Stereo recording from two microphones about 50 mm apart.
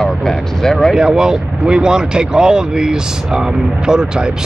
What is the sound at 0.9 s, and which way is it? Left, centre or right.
Speech, centre.